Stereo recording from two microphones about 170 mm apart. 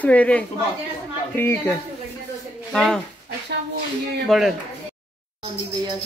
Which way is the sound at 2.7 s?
Centre (ahead or behind).